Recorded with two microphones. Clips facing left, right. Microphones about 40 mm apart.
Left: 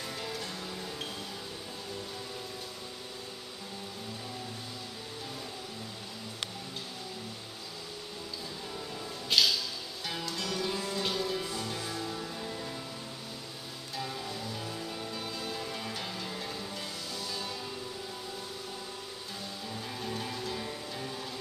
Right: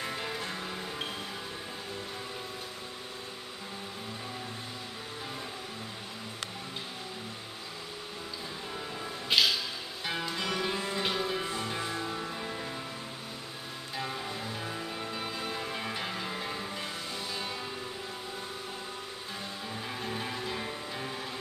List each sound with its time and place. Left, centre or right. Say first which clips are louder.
0.0 s music: right 3 dB; right
9.3 s music: right 1 dB; centre
13.9 s music: right 2 dB; right
19.7 s music: right 1 dB; right